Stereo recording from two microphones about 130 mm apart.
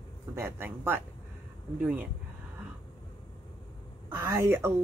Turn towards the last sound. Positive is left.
turn(degrees=-20)  # may be behind; listen again after turning